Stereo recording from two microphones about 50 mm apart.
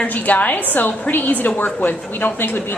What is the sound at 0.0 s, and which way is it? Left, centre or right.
A woman's voice, left.